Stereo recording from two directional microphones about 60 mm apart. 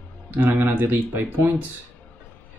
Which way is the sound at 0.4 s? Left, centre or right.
Right.